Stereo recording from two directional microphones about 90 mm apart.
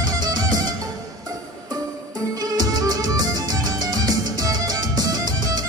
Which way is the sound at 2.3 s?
45° right (ahead or behind).